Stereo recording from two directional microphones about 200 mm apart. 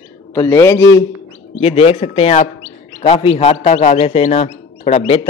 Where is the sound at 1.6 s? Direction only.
30° left (ahead or behind).